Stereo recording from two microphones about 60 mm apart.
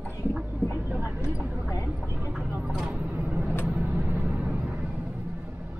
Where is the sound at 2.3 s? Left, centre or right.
Centre.